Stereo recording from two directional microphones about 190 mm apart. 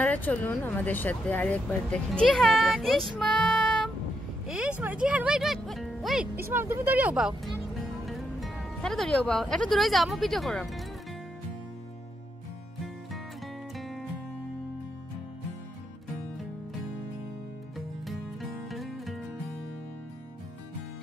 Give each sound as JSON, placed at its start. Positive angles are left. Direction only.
{"t": 0.0, "sound": "speech", "side_deg": 10}
{"t": 13.7, "sound": "music", "side_deg": 0}
{"t": 17.7, "sound": "music", "side_deg": 0}